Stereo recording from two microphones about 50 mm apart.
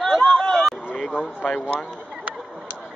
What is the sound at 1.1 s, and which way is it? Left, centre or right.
Speech, left.